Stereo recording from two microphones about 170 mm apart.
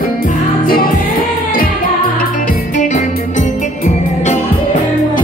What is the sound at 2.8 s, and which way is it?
Music, 45° left (ahead or behind).